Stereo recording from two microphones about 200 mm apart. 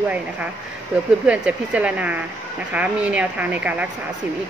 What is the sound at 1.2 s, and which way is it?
Speech, 5° right (ahead or behind).